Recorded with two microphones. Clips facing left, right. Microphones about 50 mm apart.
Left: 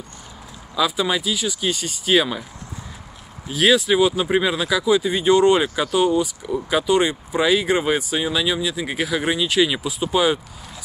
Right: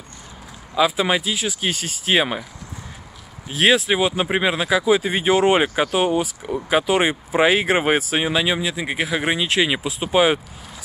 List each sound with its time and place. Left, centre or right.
0.7 s speech: right
3.5 s speech: right
5.6 s speech: right
8.3 s speech: right